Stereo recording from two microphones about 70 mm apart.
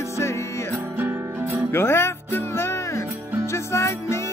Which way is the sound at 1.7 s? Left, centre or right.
Left.